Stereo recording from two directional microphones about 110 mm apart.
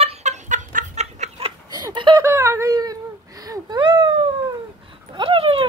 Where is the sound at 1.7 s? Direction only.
40° right (ahead or behind).